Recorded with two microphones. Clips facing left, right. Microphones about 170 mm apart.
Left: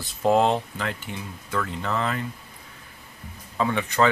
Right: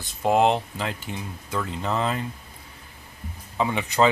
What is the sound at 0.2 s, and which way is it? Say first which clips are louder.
Speech: even; 10° right (ahead or behind).